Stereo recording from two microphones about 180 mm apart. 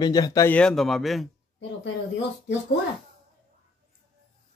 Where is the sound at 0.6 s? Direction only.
5° left (ahead or behind).